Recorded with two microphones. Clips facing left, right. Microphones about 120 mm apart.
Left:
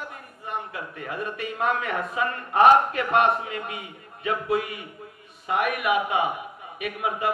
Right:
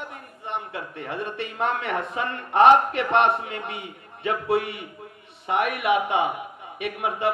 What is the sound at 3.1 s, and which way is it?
Speech, 30° right (ahead or behind).